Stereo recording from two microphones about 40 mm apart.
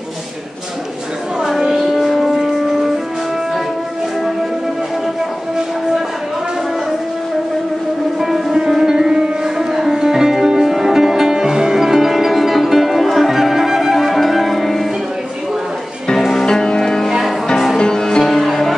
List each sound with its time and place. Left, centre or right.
1.4 s music: centre
8.2 s music: centre
16.2 s music: centre
16.4 s music: centre